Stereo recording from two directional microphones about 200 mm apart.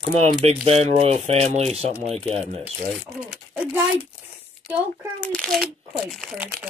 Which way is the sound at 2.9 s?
5° right (ahead or behind).